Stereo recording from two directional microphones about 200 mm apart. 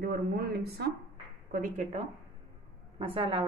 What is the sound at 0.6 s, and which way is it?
Speech, 55° right (ahead or behind).